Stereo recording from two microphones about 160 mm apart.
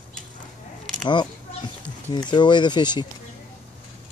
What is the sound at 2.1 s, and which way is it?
Speech, 30° left (ahead or behind).